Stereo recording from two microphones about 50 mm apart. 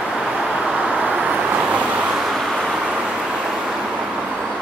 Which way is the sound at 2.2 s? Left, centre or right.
Centre.